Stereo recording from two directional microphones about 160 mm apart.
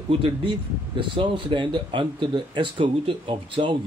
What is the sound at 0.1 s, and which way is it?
Speech, 30° right (ahead or behind).